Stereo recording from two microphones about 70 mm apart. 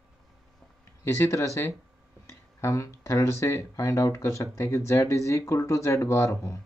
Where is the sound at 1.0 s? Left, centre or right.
Left.